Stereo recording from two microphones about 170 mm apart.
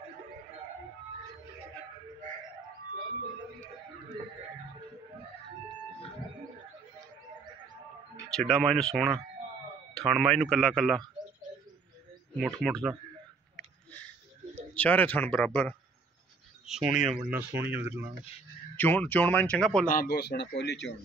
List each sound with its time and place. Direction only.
8.4 s speech: 5° left (ahead or behind)
12.4 s speech: centre (ahead or behind)
14.7 s speech: 10° left (ahead or behind)
16.6 s speech: 5° right (ahead or behind)
18.8 s speech: 10° left (ahead or behind)
19.9 s speech: 60° left (ahead or behind); by 20.9 s 85° left